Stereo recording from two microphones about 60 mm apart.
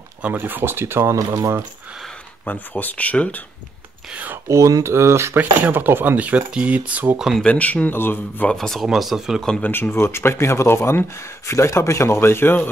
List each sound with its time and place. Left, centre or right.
0.2 s speech: right
1.1 s speech: right
2.4 s speech: left
4.5 s speech: right
4.9 s speech: right
5.4 s speech: right
6.1 s speech: right
7.4 s speech: left
7.9 s speech: left
8.5 s speech: centre
8.8 s speech: centre
9.6 s speech: left